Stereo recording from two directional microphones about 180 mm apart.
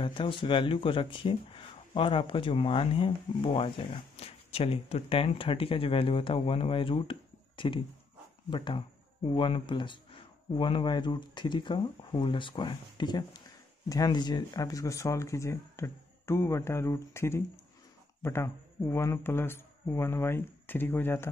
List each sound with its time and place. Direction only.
0.0 s speech: 30° left (ahead or behind); by 21.3 s 10° left (ahead or behind)